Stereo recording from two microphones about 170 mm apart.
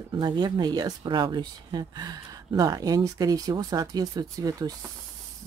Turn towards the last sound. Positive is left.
turn(degrees=-20)  # may be behind; listen again after turning